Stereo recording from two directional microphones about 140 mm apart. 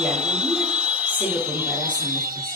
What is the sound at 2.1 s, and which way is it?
Music, 20° right (ahead or behind).